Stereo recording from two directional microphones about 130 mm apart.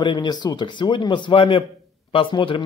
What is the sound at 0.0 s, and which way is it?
Speech, 35° left (ahead or behind).